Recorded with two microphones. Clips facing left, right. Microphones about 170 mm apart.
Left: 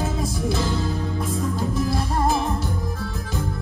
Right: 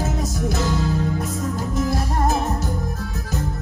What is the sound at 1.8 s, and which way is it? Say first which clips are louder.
Music: right 3 dB; 45° right (ahead or behind).